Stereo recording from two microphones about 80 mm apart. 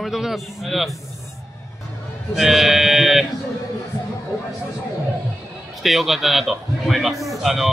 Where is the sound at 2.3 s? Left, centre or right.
Centre.